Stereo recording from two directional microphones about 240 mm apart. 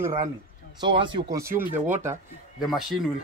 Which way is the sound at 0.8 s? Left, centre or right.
Centre.